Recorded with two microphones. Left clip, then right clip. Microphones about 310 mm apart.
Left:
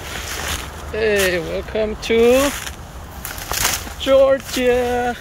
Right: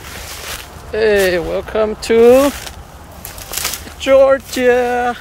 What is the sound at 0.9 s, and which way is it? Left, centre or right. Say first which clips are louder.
Speech: right 5 dB; centre.